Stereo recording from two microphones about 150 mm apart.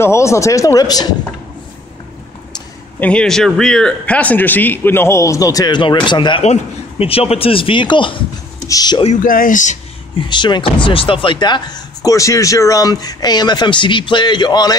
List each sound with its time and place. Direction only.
0.0 s speech: 20° left (ahead or behind)
3.0 s speech: 5° left (ahead or behind); by 6.4 s 30° left (ahead or behind)
6.4 s a man's voice: 45° left (ahead or behind); by 9.0 s 25° left (ahead or behind)
9.0 s speech: 55° left (ahead or behind)
10.2 s speech: 30° left (ahead or behind)